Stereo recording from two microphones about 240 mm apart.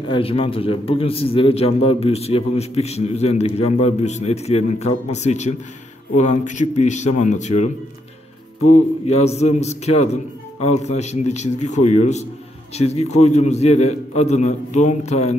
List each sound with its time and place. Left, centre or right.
0.1 s a man's voice: left
9.0 s a man's voice: left